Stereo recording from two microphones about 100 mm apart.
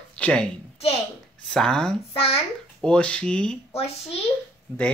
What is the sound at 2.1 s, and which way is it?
Speech, 70° left (ahead or behind).